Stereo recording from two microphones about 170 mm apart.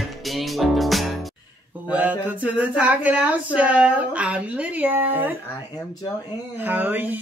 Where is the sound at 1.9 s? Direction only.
10° right (ahead or behind).